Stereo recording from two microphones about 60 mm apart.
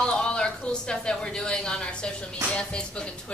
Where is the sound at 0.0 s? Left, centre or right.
Centre.